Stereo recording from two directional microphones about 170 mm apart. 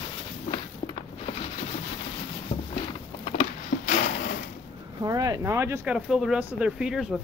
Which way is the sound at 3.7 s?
50° left (ahead or behind).